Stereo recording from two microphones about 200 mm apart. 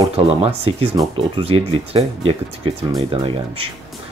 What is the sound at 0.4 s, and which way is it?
Speech, 30° right (ahead or behind).